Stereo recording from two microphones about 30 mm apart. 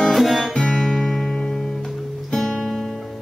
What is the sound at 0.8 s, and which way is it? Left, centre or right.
Music, centre.